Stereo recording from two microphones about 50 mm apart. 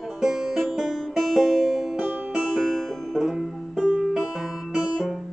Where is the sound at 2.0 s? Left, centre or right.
Centre.